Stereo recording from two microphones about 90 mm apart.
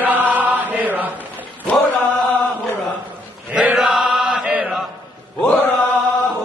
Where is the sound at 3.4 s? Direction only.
10° right (ahead or behind).